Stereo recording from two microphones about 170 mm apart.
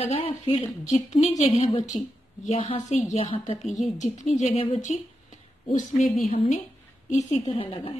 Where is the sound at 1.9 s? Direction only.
45° left (ahead or behind).